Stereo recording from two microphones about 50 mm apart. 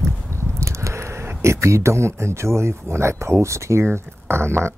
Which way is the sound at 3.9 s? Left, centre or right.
Right.